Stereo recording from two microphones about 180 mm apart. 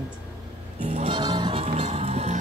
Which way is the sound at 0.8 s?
30° right (ahead or behind).